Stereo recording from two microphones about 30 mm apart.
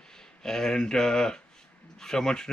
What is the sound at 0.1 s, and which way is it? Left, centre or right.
Speech, centre.